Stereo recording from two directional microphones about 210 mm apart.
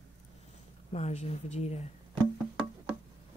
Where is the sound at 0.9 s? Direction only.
30° left (ahead or behind).